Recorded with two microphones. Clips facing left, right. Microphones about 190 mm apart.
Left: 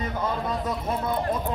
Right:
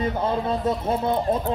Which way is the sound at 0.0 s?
30° right (ahead or behind).